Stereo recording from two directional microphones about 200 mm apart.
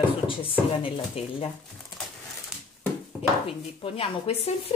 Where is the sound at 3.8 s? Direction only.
30° left (ahead or behind).